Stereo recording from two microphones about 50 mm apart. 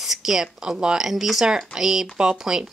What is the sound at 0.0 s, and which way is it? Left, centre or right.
Speech, centre.